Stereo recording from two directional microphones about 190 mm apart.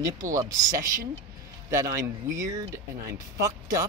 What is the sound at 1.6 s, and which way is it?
Speech, 15° right (ahead or behind).